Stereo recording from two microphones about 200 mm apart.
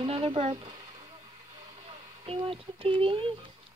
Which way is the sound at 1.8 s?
30° right (ahead or behind).